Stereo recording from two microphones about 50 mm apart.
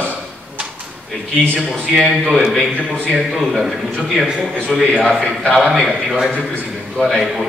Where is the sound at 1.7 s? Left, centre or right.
Centre.